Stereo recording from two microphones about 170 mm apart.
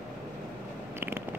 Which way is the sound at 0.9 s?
15° right (ahead or behind).